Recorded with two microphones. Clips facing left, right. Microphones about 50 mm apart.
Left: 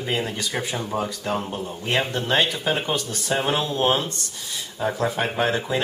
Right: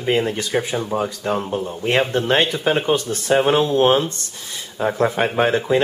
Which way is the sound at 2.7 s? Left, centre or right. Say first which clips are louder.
Right 6 dB; centre.